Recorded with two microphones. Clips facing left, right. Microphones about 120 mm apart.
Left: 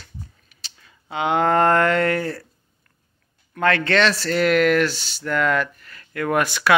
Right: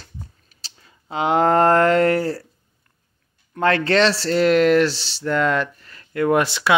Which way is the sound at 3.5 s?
30° right (ahead or behind).